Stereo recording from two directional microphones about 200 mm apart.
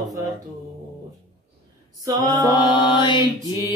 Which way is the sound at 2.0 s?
20° right (ahead or behind).